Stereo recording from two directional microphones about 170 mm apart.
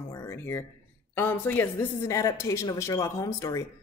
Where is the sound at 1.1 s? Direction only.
15° left (ahead or behind).